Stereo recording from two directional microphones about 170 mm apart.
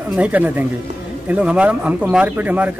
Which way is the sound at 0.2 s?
10° right (ahead or behind).